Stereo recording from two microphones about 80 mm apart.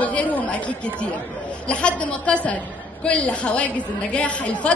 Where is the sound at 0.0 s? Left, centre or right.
Centre.